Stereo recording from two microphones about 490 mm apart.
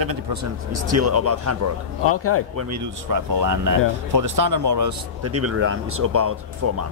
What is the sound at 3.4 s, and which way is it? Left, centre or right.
Speech, right.